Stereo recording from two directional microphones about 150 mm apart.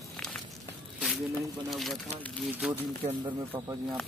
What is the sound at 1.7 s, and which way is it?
Speech, centre (ahead or behind).